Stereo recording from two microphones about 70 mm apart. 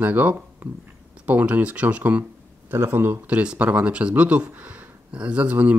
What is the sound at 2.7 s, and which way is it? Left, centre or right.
Speech, right.